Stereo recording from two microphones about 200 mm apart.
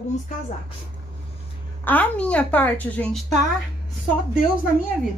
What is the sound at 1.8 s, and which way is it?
Speech, 10° left (ahead or behind).